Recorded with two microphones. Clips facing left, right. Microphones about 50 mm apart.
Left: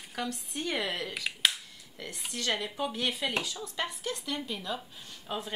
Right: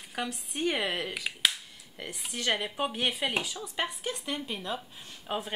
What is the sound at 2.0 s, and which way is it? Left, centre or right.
Speech, right.